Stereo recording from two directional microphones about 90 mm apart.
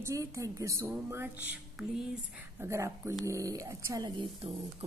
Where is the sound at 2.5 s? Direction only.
30° right (ahead or behind).